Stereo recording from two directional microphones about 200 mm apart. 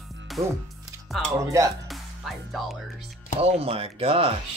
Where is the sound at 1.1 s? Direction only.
Centre (ahead or behind).